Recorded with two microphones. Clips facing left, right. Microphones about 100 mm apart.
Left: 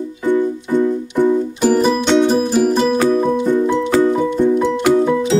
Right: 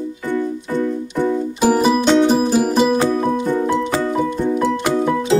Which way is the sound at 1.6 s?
5° right (ahead or behind).